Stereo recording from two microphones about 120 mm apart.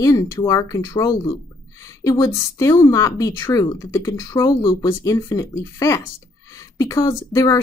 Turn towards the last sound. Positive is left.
turn(degrees=30)  # may be behind; listen again after turning